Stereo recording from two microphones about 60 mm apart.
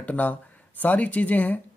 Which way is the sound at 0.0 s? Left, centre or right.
Left.